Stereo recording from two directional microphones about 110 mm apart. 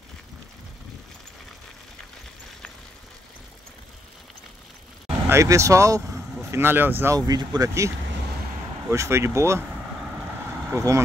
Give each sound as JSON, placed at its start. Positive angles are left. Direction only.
{"t": 5.3, "sound": "speech", "side_deg": -30}
{"t": 7.2, "sound": "speech", "side_deg": -35}
{"t": 8.9, "sound": "vehicle", "side_deg": -25}
{"t": 10.7, "sound": "speech", "side_deg": -30}